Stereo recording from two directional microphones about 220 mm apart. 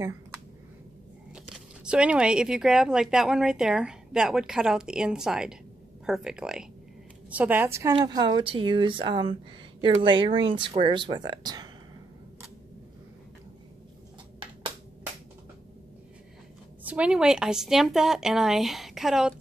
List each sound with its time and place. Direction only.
0.0 s a sound: 15° right (ahead or behind)
1.3 s a woman's voice: 5° right (ahead or behind)
16.8 s speech: 5° right (ahead or behind)